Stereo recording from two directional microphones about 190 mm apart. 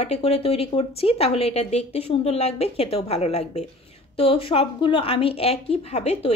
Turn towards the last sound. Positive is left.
turn(degrees=35)  # may be behind; listen again after turning